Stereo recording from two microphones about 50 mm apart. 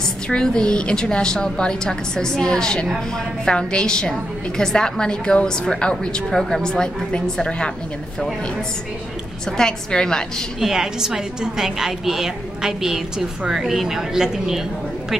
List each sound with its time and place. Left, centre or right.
0.3 s a woman's voice: centre
9.6 s a woman's voice: centre
10.6 s a woman's voice: centre